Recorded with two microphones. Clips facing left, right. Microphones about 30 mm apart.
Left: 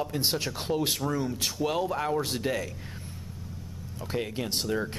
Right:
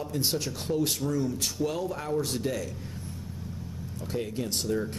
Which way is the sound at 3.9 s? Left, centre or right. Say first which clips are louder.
Left 1 dB; left.